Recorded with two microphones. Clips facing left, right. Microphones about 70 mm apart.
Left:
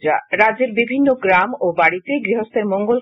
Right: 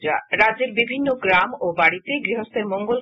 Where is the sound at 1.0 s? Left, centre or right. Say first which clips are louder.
Left 4 dB; centre.